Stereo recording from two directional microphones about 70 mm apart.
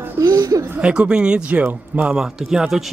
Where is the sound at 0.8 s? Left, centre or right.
Centre.